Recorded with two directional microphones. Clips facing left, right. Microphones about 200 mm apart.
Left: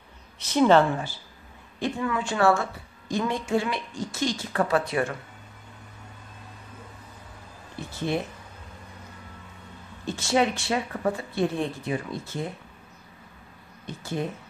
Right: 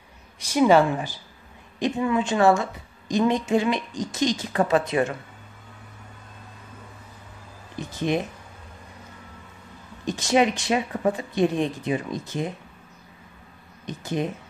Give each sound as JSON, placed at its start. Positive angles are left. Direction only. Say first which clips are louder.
{"t": 0.4, "sound": "a woman's voice", "louder": "right 1 dB", "side_deg": -10}
{"t": 7.7, "sound": "speech", "louder": "right 3 dB", "side_deg": -15}
{"t": 10.0, "sound": "speech", "louder": "right 3 dB", "side_deg": -15}
{"t": 13.8, "sound": "speech", "louder": "right 4 dB", "side_deg": -20}